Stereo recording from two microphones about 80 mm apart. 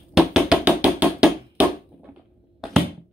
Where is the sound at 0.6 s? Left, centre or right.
Centre.